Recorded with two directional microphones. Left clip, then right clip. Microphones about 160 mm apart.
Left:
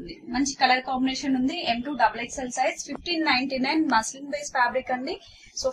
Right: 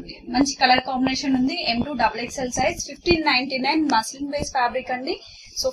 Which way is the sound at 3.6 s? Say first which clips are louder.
Right 2 dB; 25° right (ahead or behind).